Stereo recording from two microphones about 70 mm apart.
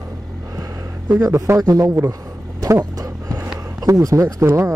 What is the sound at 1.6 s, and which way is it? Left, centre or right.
Speech, right.